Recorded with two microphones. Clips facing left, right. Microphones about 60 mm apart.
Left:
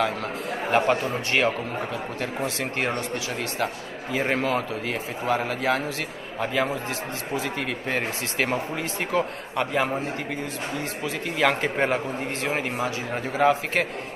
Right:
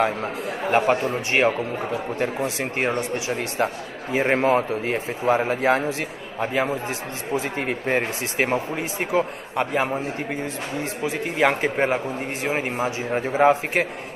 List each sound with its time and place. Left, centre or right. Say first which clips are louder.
0.0 s a man's voice: right 3 dB; right
2.4 s a man's voice: right 3 dB; centre
7.3 s a man's voice: right 4 dB; right
8.5 s a man's voice: right 3 dB; centre
11.1 s a man's voice: right 2 dB; centre
11.7 s a man's voice: right 2 dB; centre
12.8 s a man's voice: right 4 dB; right